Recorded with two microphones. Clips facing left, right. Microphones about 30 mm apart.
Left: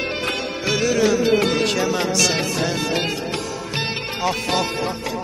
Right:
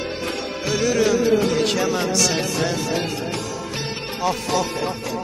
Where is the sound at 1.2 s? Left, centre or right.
Left.